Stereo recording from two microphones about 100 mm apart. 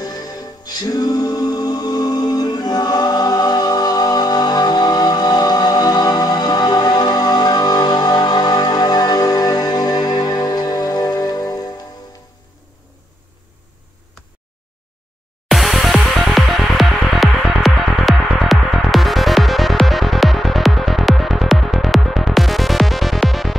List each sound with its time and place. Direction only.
0.0 s music: 40° left (ahead or behind)
15.4 s music: centre (ahead or behind)